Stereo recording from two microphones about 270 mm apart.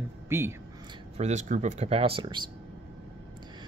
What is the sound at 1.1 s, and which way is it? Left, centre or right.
Speech, right.